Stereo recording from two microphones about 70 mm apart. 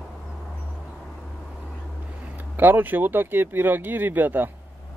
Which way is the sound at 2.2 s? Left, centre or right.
Right.